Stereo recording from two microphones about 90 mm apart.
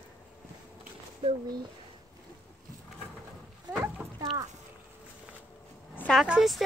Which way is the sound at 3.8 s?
35° right (ahead or behind).